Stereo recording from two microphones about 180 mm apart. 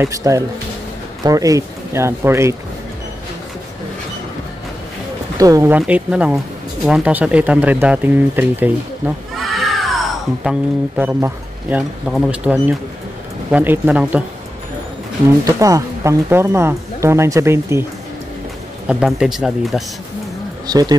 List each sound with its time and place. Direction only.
0.0 s speech: 15° right (ahead or behind)
5.4 s speech: 15° right (ahead or behind)
5.8 s speech: 5° right (ahead or behind)
15.4 s speech: 20° right (ahead or behind)
18.9 s speech: 5° right (ahead or behind)
20.6 s speech: 20° right (ahead or behind)